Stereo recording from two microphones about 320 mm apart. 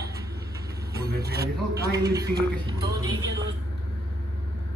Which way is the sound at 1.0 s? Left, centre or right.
Right.